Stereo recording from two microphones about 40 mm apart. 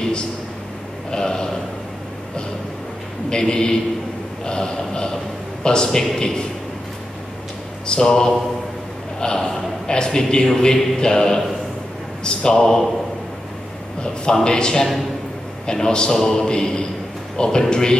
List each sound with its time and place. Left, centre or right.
1.1 s a man's voice: centre
3.3 s a man's voice: left
7.8 s a man's voice: left
14.4 s a man's voice: centre